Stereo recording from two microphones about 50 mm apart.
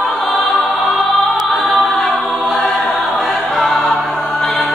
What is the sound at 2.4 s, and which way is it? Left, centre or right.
Music, left.